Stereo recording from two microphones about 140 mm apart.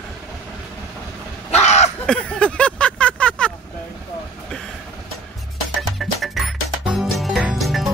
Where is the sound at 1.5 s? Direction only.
55° left (ahead or behind).